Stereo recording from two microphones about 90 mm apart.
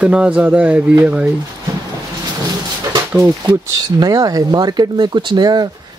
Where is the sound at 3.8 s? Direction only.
45° right (ahead or behind).